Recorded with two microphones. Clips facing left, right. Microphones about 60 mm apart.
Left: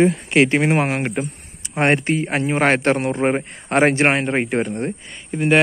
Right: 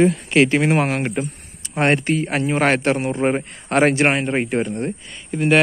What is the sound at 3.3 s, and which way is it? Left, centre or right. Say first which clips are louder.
Speech: even; left.